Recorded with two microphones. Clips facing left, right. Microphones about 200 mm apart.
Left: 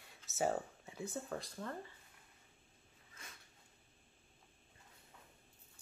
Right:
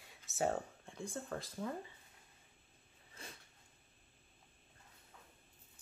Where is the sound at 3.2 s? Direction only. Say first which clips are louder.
Right 5 dB; 35° right (ahead or behind).